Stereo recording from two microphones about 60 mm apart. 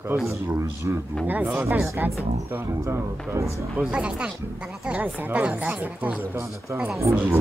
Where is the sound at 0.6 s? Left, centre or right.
Right.